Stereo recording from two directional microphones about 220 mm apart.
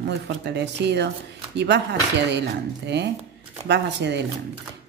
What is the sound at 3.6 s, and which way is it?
Speech, 50° right (ahead or behind).